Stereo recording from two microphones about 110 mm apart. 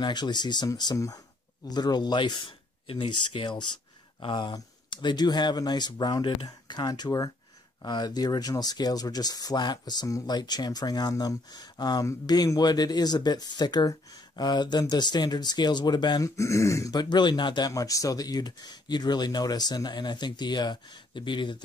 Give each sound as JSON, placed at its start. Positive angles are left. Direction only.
{"t": 0.0, "sound": "speech", "side_deg": 40}
{"t": 16.3, "sound": "speech", "side_deg": 25}
{"t": 16.9, "sound": "speech", "side_deg": 40}